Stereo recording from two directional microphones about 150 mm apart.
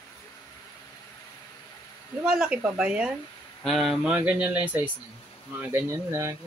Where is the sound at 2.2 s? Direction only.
5° right (ahead or behind).